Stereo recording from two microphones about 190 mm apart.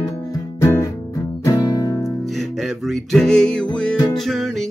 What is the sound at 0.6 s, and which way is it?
Music, 15° left (ahead or behind).